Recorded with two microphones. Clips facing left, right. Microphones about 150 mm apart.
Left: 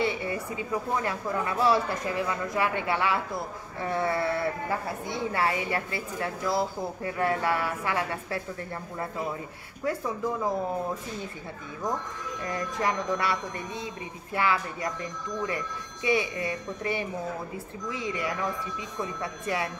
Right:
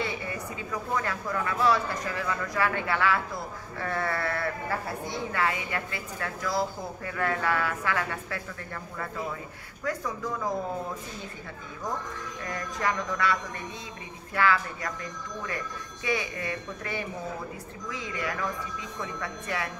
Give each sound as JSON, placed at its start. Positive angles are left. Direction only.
{"t": 0.0, "sound": "a woman's voice", "side_deg": 25}
{"t": 9.8, "sound": "a woman's voice", "side_deg": 25}
{"t": 12.4, "sound": "a woman's voice", "side_deg": 25}